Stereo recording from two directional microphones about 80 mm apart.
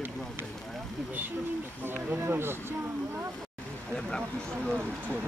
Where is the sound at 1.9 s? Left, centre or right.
Right.